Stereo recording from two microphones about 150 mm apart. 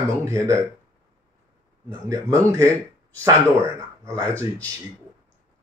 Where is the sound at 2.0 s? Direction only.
25° right (ahead or behind).